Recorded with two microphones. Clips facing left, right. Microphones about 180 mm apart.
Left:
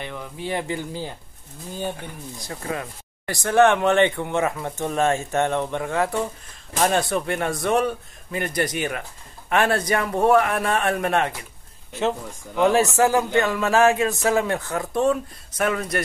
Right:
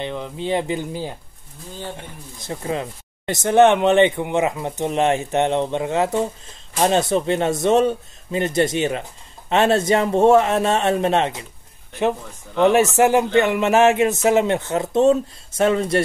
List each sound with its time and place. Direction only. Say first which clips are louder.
0.0 s a man's voice: right 5 dB; 20° right (ahead or behind)